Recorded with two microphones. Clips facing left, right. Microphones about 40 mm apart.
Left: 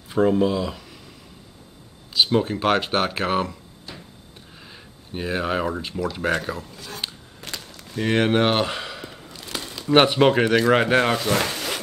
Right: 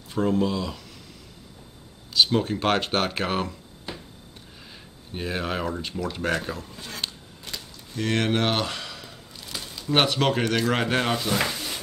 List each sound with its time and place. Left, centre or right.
0.1 s speech: centre
2.1 s speech: centre
4.7 s speech: centre
7.0 s a sound: centre
7.5 s a sound: left
7.9 s speech: centre
9.5 s a sound: left
9.9 s speech: left
11.1 s speech: left